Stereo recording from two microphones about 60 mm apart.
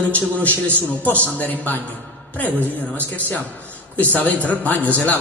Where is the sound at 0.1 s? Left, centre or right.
Left.